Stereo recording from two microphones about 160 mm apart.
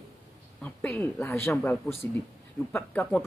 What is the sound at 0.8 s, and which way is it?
Speech, 10° left (ahead or behind).